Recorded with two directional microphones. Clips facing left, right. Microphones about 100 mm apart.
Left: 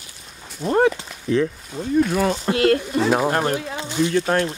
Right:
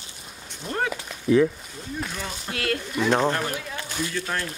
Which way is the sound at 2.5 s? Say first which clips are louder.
Left 7 dB; 35° left (ahead or behind).